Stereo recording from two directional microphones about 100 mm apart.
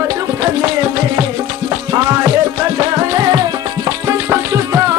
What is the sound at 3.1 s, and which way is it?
Music, 40° right (ahead or behind).